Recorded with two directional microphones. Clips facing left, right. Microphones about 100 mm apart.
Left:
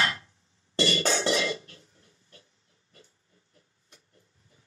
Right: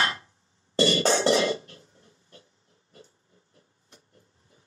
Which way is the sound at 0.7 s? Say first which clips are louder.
Right 4 dB; 30° right (ahead or behind).